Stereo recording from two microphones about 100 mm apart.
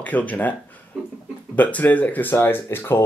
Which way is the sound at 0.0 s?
15° left (ahead or behind).